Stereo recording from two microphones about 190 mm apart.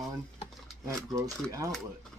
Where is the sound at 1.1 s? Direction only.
15° right (ahead or behind).